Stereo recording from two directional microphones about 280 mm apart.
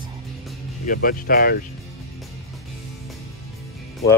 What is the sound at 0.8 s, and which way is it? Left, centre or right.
Speech, left.